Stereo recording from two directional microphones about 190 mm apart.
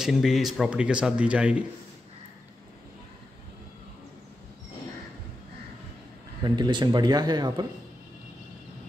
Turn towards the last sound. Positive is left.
turn(degrees=-20)  # may be behind; listen again after turning